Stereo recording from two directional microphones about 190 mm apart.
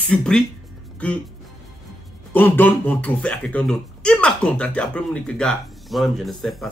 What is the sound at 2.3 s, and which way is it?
Speech, 10° left (ahead or behind).